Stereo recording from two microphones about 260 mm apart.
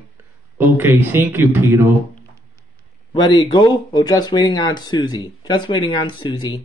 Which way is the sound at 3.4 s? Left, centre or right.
Centre.